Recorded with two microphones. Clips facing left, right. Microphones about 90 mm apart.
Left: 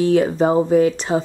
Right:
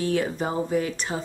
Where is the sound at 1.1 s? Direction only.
55° left (ahead or behind).